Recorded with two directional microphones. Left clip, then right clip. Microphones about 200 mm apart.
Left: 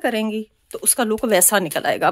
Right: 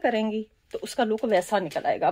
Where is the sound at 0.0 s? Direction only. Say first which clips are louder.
Left 3 dB; 15° left (ahead or behind).